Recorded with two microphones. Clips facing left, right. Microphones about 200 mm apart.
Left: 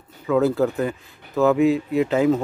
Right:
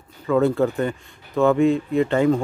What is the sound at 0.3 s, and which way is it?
Speech, centre (ahead or behind).